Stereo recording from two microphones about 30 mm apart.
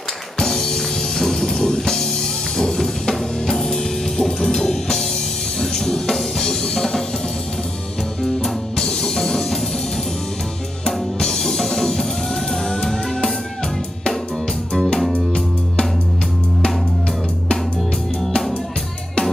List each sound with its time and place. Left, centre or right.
0.4 s music: centre
8.2 s music: left
11.1 s music: centre